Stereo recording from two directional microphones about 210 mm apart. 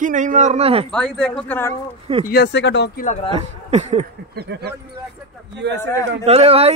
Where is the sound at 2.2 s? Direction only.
50° left (ahead or behind).